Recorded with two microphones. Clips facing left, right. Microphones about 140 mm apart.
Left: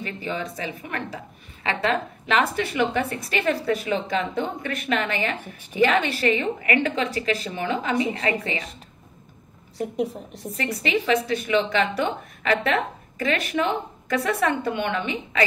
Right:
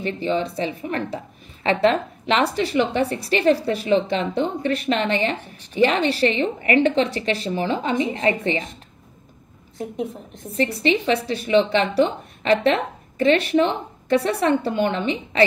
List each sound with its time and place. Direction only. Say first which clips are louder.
0.0 s a woman's voice: right 7 dB; 30° right (ahead or behind)
10.8 s a woman's voice: even; 30° right (ahead or behind)